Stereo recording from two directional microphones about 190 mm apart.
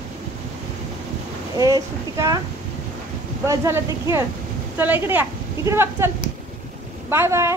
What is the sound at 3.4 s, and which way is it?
A woman's voice, 15° right (ahead or behind).